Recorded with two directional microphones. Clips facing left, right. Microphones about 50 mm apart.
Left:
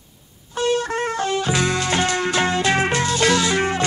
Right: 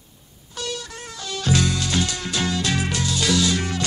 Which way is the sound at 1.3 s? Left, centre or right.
Left.